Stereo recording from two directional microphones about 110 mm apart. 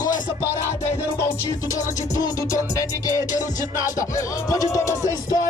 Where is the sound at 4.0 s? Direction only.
30° left (ahead or behind).